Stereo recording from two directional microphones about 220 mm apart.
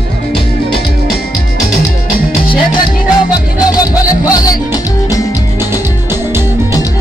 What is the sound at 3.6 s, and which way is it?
Music, 15° left (ahead or behind).